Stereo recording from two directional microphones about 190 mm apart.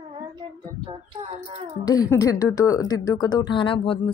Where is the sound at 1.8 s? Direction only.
20° left (ahead or behind).